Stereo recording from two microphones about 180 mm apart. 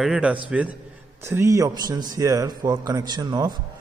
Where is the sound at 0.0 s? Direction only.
5° right (ahead or behind).